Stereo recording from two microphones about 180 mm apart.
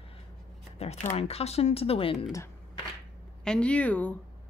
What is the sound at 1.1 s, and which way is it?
A woman's voice, 35° left (ahead or behind).